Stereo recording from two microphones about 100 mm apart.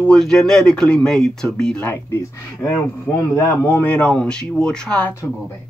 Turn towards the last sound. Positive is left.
turn(degrees=10)  # may be behind; listen again after turning